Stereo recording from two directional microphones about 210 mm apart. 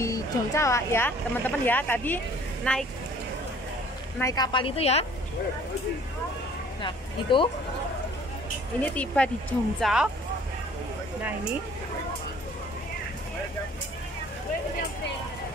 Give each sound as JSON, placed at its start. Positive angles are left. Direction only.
{"t": 0.0, "sound": "speech", "side_deg": 15}
{"t": 4.2, "sound": "a woman's voice", "side_deg": 15}
{"t": 6.8, "sound": "speech", "side_deg": 25}
{"t": 8.8, "sound": "speech", "side_deg": 5}